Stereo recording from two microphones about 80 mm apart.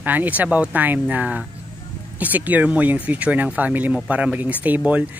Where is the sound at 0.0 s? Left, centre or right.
Right.